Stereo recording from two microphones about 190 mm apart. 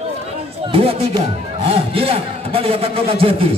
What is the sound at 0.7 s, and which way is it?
A man's voice, 30° right (ahead or behind).